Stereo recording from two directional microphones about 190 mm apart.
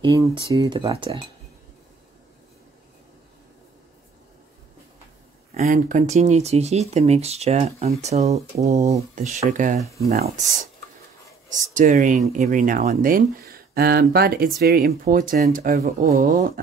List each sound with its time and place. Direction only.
0.0 s speech: 20° right (ahead or behind)
5.5 s speech: 40° right (ahead or behind)